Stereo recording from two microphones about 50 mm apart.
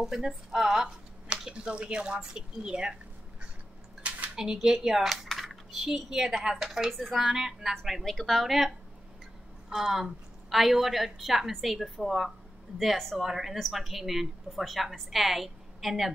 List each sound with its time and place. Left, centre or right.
0.0 s speech: centre
4.4 s speech: centre
7.7 s a woman's voice: centre
9.7 s a woman's voice: centre